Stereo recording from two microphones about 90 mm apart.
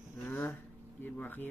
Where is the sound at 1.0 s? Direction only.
20° left (ahead or behind).